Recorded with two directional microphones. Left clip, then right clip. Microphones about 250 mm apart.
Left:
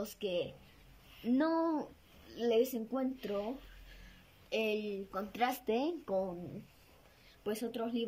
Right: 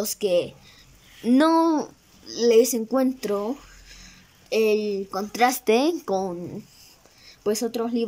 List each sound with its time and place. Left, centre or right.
0.0 s speech: right
4.5 s a woman's voice: right
7.4 s a woman's voice: right